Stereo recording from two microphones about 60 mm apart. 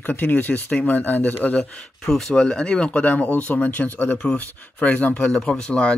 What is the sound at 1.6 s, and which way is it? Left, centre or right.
Speech, centre.